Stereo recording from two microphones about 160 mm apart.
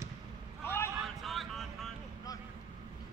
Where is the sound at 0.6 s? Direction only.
15° left (ahead or behind).